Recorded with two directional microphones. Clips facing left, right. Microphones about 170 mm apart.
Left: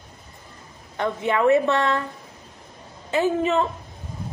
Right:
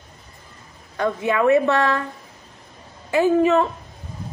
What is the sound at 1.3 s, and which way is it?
Speech, 20° left (ahead or behind).